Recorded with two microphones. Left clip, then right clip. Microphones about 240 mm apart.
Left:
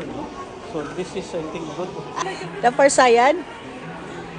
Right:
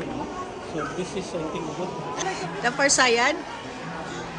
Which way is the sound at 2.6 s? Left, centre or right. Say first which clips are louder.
Left 6 dB; centre.